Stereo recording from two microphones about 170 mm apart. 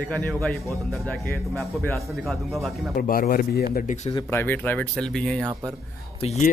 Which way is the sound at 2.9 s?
55° left (ahead or behind).